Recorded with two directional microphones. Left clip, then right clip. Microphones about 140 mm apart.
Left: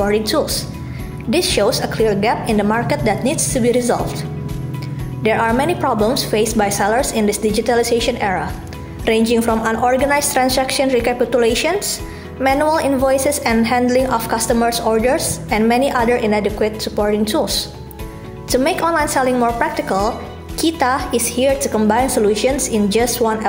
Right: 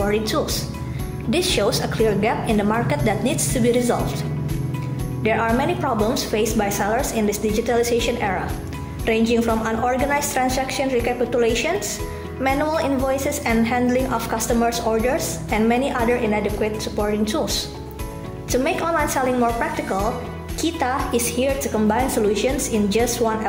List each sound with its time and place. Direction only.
0.0 s a woman's voice: 30° left (ahead or behind)